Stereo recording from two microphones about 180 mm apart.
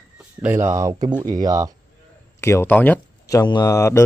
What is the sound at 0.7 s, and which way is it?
Speech, 20° right (ahead or behind).